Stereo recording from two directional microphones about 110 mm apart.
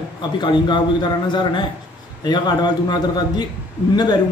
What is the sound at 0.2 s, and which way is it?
A man's voice, 45° left (ahead or behind).